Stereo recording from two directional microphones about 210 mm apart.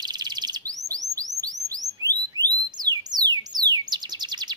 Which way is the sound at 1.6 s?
15° right (ahead or behind).